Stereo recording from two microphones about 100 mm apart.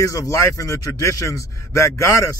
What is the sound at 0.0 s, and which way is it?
A man's voice, 35° left (ahead or behind).